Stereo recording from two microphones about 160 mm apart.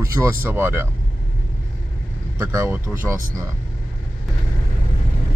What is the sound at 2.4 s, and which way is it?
Speech, 15° right (ahead or behind).